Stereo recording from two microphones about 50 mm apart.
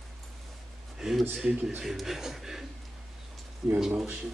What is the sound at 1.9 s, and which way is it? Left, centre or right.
Speech, centre.